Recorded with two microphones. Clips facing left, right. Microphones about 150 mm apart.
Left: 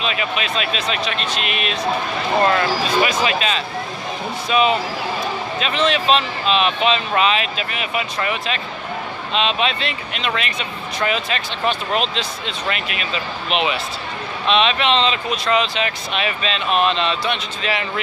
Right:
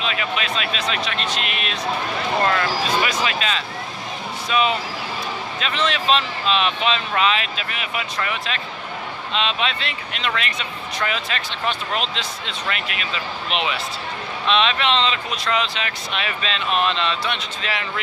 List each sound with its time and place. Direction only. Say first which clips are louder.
0.0 s speech: left 2 dB; 15° left (ahead or behind)